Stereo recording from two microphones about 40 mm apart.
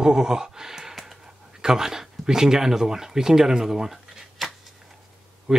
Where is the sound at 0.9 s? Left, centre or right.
Centre.